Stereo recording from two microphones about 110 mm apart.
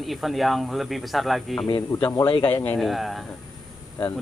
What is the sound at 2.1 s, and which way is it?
Speech, 40° left (ahead or behind).